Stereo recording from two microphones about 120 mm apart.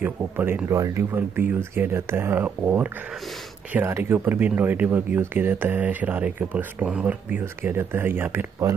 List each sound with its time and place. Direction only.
0.0 s speech: 15° right (ahead or behind)